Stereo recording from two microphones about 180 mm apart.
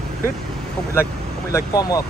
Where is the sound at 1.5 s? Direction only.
20° left (ahead or behind).